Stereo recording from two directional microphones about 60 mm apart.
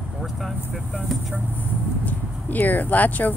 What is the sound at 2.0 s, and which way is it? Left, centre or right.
Speech, left.